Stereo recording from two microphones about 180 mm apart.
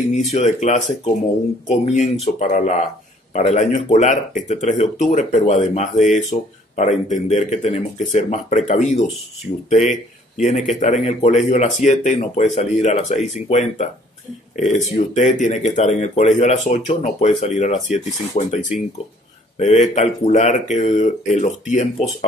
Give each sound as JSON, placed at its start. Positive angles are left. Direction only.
{"t": 0.3, "sound": "speech", "side_deg": 40}
{"t": 10.4, "sound": "speech", "side_deg": 40}
{"t": 14.9, "sound": "speech", "side_deg": 45}